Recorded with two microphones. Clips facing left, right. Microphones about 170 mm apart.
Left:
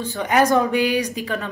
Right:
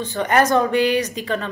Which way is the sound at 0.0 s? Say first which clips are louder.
Even; 5° left (ahead or behind).